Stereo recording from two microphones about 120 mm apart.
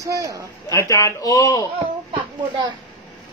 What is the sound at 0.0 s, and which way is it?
Speech, 30° right (ahead or behind).